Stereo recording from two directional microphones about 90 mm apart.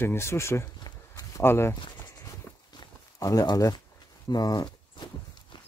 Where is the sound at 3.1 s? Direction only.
40° left (ahead or behind).